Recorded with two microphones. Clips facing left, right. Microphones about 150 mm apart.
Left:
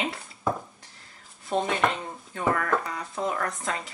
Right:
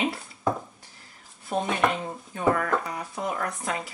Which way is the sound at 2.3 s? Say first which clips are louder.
Right 1 dB; 20° right (ahead or behind).